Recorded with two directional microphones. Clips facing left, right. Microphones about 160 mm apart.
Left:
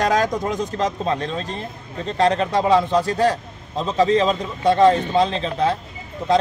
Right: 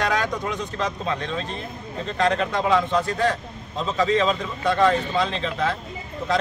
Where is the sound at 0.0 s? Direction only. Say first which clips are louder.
Left 5 dB; 40° left (ahead or behind).